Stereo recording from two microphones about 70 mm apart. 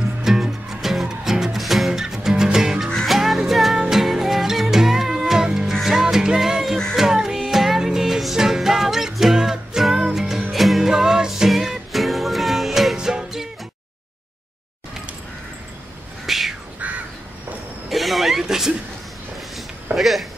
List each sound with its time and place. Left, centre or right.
0.2 s music: centre
2.9 s music: centre
16.3 s duck: centre
16.8 s crow: right
17.8 s a sound: centre
20.0 s a sound: centre